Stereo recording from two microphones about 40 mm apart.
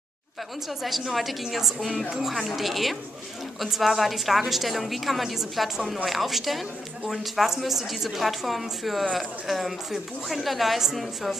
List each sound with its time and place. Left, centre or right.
0.8 s a woman's voice: centre